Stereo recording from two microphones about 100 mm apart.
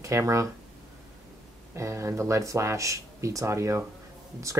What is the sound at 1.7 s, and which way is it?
Speech, 30° right (ahead or behind).